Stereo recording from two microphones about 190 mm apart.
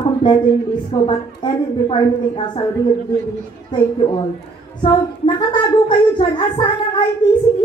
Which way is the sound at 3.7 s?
25° left (ahead or behind).